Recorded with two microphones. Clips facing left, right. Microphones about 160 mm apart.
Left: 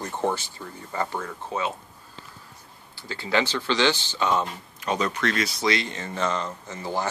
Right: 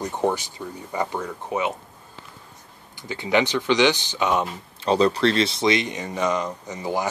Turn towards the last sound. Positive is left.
turn(degrees=-15)  # may be behind; listen again after turning